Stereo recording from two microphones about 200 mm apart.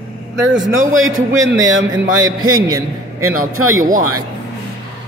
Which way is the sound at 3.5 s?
90° right.